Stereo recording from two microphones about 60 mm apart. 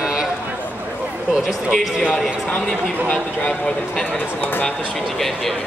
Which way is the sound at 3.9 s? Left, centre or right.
Centre.